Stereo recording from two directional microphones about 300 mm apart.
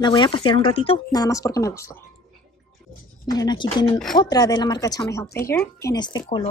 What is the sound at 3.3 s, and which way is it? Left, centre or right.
Speech, centre.